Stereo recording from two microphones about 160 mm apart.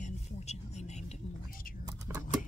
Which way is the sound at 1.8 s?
15° right (ahead or behind).